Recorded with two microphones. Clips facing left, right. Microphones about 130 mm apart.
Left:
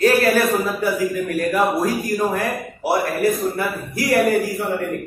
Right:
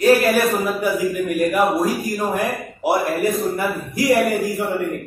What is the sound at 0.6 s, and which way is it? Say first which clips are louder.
A man's voice: right 1 dB; 15° right (ahead or behind).